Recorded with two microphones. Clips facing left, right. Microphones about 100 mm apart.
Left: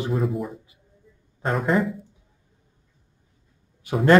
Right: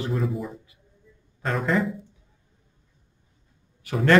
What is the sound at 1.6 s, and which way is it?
Speech, 5° left (ahead or behind).